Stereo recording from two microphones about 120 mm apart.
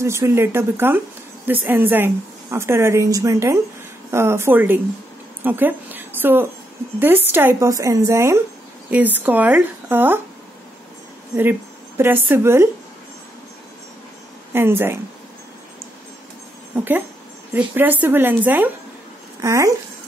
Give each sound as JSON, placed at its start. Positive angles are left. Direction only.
{"t": 0.0, "sound": "a woman's voice", "side_deg": -25}
{"t": 5.4, "sound": "a sound", "side_deg": -15}
{"t": 7.0, "sound": "speech", "side_deg": -15}
{"t": 7.7, "sound": "a woman's voice", "side_deg": -25}
{"t": 12.0, "sound": "speech", "side_deg": -15}
{"t": 14.5, "sound": "a woman's voice", "side_deg": -20}
{"t": 16.7, "sound": "speech", "side_deg": -15}
{"t": 19.4, "sound": "a woman's voice", "side_deg": -25}